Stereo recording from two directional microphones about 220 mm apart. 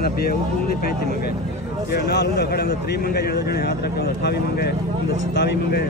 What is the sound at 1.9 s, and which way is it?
Speech, 50° left (ahead or behind).